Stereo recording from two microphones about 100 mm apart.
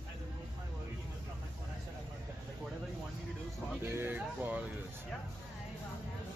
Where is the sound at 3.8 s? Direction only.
20° right (ahead or behind).